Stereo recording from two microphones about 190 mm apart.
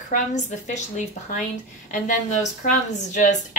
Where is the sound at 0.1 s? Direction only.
40° left (ahead or behind).